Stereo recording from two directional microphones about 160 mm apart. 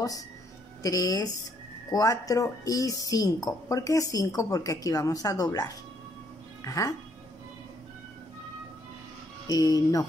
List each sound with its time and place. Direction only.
0.8 s speech: 20° left (ahead or behind)
9.5 s speech: 20° left (ahead or behind)